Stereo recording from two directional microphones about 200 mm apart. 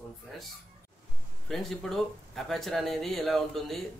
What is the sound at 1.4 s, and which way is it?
Speech, centre (ahead or behind).